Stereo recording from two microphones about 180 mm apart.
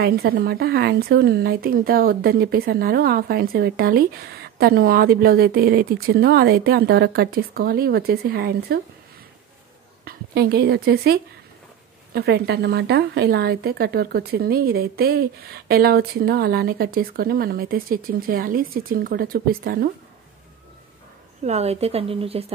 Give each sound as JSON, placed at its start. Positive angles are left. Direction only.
{"t": 0.0, "sound": "a woman's voice", "side_deg": -60}
{"t": 10.0, "sound": "a woman's voice", "side_deg": -60}
{"t": 21.5, "sound": "speech", "side_deg": -35}